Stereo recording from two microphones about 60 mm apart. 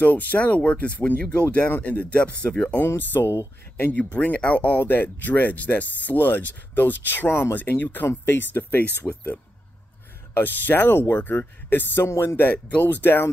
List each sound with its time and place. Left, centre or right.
0.0 s speech: left
3.0 s speech: left
4.0 s speech: left
12.4 s speech: left